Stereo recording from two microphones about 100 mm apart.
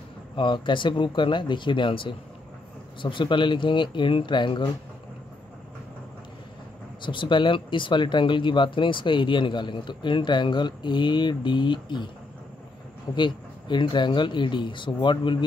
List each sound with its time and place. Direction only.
0.4 s speech: 55° left (ahead or behind)
7.1 s speech: 55° left (ahead or behind)
13.1 s speech: 50° left (ahead or behind)